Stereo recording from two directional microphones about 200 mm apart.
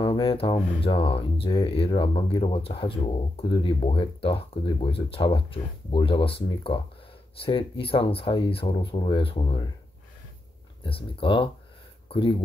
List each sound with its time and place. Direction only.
0.0 s speech: 25° left (ahead or behind)
10.8 s speech: 25° left (ahead or behind)